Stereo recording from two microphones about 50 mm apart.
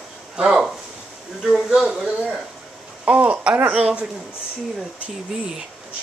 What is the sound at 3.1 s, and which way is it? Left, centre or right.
Speech, right.